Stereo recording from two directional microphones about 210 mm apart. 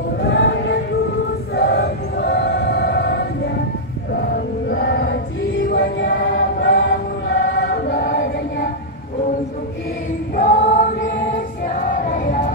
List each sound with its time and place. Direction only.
0.2 s a sound: 55° left (ahead or behind)
1.5 s a capella: 55° left (ahead or behind)
4.1 s music: 50° left (ahead or behind)
5.7 s choir: 50° left (ahead or behind)
10.3 s choir: 40° left (ahead or behind)
11.6 s music: 40° left (ahead or behind)